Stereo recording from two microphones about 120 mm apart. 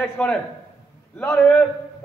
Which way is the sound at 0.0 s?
10° left (ahead or behind).